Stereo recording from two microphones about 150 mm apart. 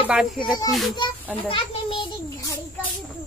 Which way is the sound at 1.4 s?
35° left (ahead or behind).